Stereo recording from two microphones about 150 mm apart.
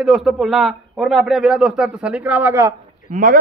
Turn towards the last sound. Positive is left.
turn(degrees=-60)  # may be behind; listen again after turning